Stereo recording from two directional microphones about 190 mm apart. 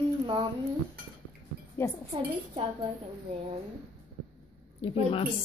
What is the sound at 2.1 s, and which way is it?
A woman's voice, 25° right (ahead or behind).